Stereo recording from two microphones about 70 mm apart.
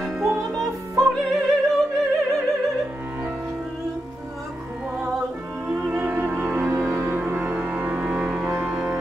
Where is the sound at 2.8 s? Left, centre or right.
Right.